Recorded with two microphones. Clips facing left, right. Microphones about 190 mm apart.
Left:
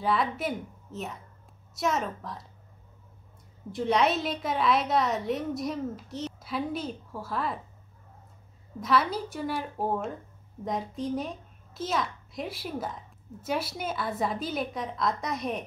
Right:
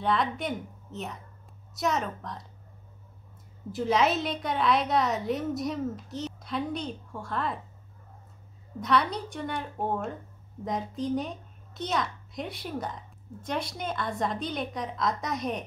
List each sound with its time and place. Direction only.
0.0 s a child's voice: 5° left (ahead or behind)
3.7 s a child's voice: centre (ahead or behind)
8.8 s a child's voice: centre (ahead or behind)